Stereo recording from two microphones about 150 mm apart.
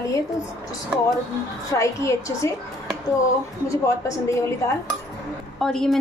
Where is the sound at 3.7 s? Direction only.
20° left (ahead or behind).